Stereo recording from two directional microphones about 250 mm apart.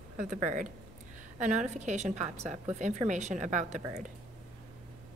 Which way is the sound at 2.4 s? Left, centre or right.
Centre.